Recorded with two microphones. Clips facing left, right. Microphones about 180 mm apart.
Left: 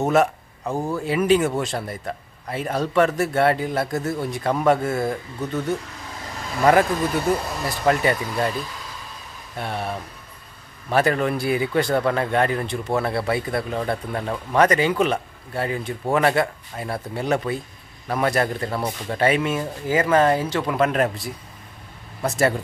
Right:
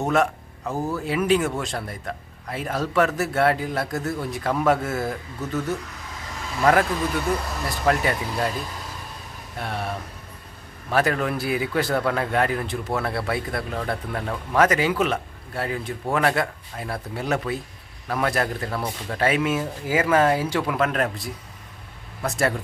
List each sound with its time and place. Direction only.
0.0 s speech: 5° left (ahead or behind)
6.6 s speech: centre (ahead or behind)
9.6 s speech: centre (ahead or behind)